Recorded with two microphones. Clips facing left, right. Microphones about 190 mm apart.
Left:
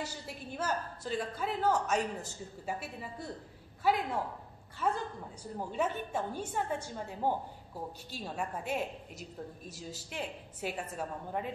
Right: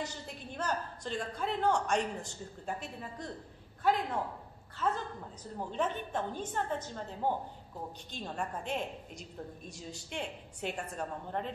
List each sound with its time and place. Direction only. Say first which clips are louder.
0.0 s a woman's voice: even; 5° left (ahead or behind)